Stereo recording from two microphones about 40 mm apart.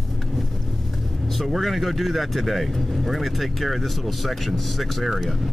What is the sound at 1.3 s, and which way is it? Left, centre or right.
Speech, centre.